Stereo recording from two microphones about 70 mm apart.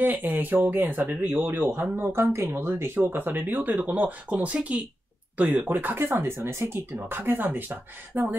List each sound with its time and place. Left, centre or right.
0.0 s speech: right
6.2 s speech: right